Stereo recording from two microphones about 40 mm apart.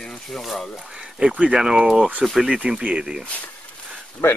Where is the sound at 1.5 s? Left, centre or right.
Centre.